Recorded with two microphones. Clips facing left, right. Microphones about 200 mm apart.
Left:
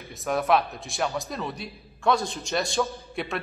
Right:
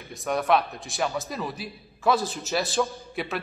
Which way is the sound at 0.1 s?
Centre (ahead or behind).